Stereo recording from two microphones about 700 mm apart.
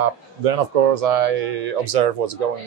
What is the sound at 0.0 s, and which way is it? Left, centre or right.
Speech, right.